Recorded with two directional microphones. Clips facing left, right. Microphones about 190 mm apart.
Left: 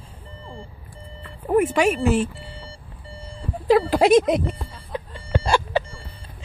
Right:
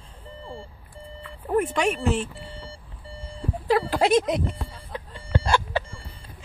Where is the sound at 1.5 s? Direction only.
5° left (ahead or behind).